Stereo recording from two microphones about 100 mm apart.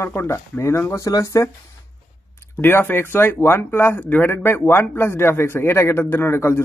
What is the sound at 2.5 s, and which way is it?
Speech, 20° left (ahead or behind).